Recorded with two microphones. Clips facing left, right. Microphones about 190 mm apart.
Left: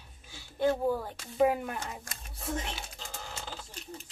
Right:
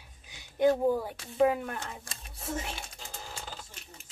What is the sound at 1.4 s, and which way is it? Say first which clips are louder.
Speech: right 1 dB; 5° left (ahead or behind).